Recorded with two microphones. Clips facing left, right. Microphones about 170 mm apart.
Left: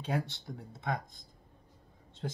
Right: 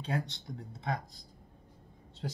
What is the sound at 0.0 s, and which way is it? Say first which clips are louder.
Speech: left 1 dB; 10° left (ahead or behind).